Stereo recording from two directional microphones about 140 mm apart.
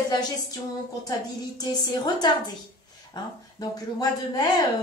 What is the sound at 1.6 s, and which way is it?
Speech, 30° left (ahead or behind).